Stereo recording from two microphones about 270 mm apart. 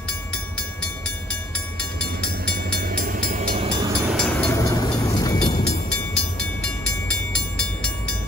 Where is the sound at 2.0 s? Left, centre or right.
Right; by 3.9 s centre.